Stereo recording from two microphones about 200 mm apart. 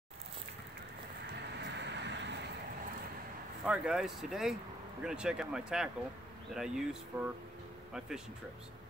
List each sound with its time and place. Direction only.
1.6 s vehicle: 60° right (ahead or behind)
3.6 s speech: 5° right (ahead or behind)